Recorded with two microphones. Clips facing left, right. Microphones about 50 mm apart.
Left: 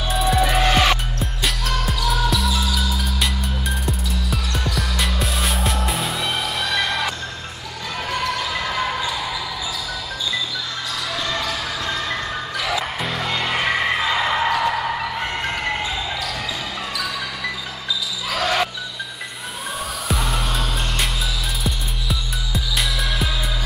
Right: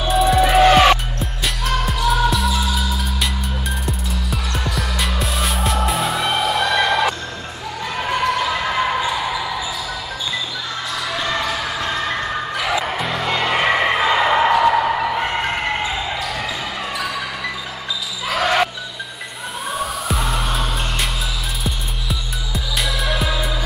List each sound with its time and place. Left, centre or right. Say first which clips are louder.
0.1 s music: right 5 dB; centre
0.7 s music: right 7 dB; centre
1.2 s music: right 1 dB; centre
8.0 s basketball bounce: right 5 dB; centre
11.1 s basketball bounce: right 3 dB; centre
18.3 s basketball bounce: right 4 dB; centre
19.8 s music: right 2 dB; centre
22.5 s music: right 1 dB; centre